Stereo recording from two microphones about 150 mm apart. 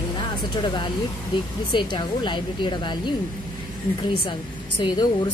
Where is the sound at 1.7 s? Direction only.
30° left (ahead or behind).